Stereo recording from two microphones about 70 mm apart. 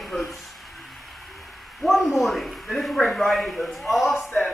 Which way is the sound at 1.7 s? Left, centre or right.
Centre.